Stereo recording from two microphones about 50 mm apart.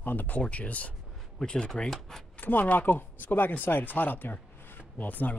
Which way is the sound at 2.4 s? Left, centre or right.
Left.